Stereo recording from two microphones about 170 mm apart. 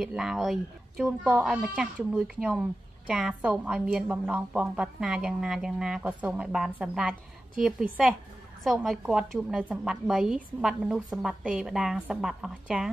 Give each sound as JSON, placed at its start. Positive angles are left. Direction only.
{"t": 0.0, "sound": "a woman's voice", "side_deg": -5}
{"t": 8.6, "sound": "a woman's voice", "side_deg": 0}